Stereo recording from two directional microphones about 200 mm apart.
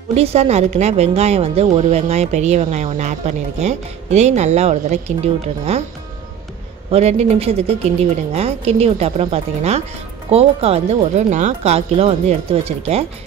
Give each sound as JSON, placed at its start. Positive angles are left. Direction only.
{"t": 0.1, "sound": "a woman's voice", "side_deg": -30}
{"t": 6.9, "sound": "a woman's voice", "side_deg": -35}